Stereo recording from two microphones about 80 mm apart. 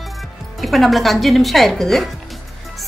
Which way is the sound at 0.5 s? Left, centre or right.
Centre.